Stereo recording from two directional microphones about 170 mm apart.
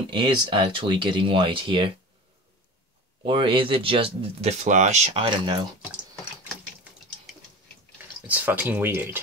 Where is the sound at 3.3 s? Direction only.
30° right (ahead or behind).